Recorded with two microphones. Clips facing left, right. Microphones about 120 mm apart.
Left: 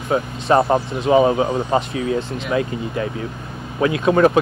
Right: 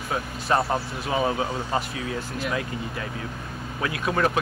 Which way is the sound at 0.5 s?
45° left (ahead or behind).